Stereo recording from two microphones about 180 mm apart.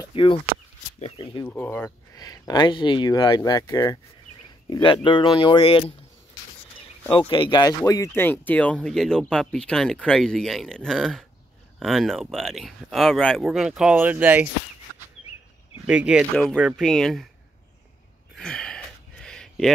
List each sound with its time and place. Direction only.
0.0 s a sound: 30° left (ahead or behind)
0.9 s speech: 35° left (ahead or behind)
1.5 s speech: 10° left (ahead or behind)
2.1 s speech: 20° left (ahead or behind)
7.2 s speech: 30° left (ahead or behind); by 14.5 s 10° right (ahead or behind)
15.9 s speech: 5° right (ahead or behind)
18.3 s a sound: 5° left (ahead or behind)